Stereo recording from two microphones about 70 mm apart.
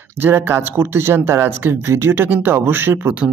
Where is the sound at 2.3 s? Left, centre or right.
Right.